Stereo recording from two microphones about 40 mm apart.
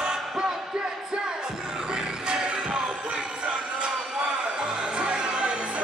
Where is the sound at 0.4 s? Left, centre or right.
Centre.